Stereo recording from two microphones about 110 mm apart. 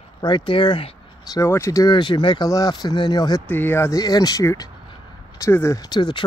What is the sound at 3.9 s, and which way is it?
Speech, 35° left (ahead or behind).